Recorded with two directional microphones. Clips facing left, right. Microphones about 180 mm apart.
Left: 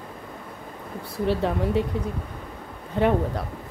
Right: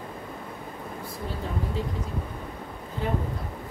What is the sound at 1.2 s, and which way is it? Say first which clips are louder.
Speech: left 10 dB; 75° left (ahead or behind).